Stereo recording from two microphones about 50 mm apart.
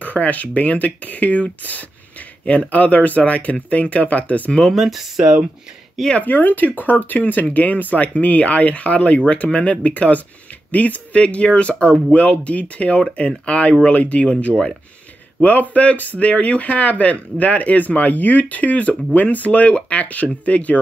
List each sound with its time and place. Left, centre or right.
0.0 s speech: left
4.7 s speech: centre
6.1 s speech: left
15.4 s speech: left